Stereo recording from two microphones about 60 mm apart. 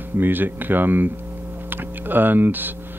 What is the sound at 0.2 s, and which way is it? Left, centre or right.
Speech, right.